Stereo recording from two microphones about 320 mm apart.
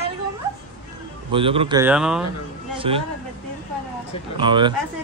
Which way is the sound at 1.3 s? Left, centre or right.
Centre.